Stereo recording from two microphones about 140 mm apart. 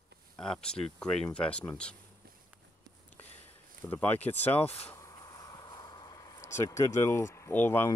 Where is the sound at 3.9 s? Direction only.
10° left (ahead or behind).